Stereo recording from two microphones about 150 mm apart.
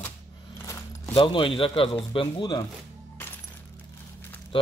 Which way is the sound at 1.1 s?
35° left (ahead or behind).